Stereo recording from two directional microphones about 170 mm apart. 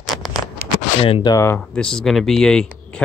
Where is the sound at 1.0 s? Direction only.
35° left (ahead or behind).